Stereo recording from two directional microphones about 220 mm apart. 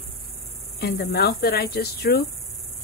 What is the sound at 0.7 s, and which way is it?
Speech, 45° left (ahead or behind).